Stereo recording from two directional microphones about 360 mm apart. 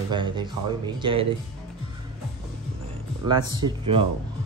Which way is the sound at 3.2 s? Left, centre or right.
Centre.